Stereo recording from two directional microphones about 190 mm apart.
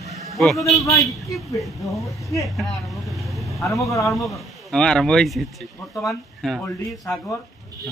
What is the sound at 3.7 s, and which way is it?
Speech, 15° left (ahead or behind).